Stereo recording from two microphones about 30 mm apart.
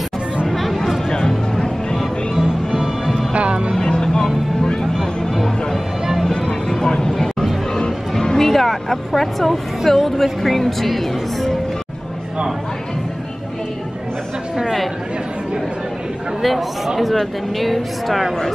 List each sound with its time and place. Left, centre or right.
0.5 s a sound: centre
1.1 s music: left
2.3 s music: centre
3.3 s music: right
3.9 s music: left
5.3 s music: centre
6.2 s music: centre
8.4 s vehicle: centre
9.1 s a woman's voice: centre
16.4 s a sound: centre
17.6 s a woman's voice: centre